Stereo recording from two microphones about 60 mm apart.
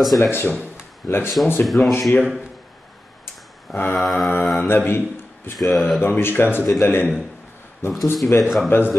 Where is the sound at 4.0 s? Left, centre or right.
Centre.